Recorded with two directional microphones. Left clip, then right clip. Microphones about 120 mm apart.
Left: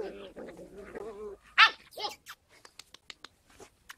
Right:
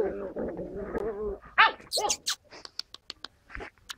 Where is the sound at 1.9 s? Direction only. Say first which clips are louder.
Right 9 dB; 45° left (ahead or behind).